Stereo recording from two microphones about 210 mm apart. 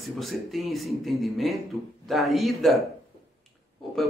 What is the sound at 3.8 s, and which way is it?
Pig, centre (ahead or behind).